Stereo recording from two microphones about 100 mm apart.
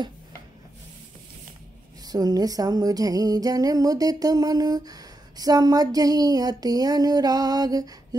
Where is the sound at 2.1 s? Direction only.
40° right (ahead or behind).